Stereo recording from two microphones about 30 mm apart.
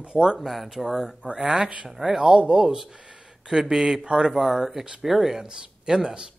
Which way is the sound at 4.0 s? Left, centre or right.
Right.